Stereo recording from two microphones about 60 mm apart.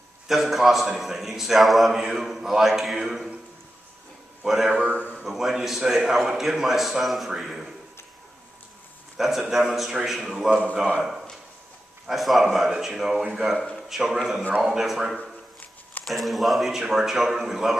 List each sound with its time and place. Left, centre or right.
0.3 s a man's voice: centre
4.5 s a man's voice: centre
9.1 s a man's voice: centre
10.5 s speech: centre
11.0 s a man's voice: centre
13.6 s a sound: centre
13.8 s a man's voice: centre